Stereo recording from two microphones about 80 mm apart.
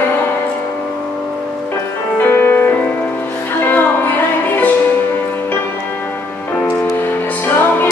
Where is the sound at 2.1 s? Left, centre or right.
Left.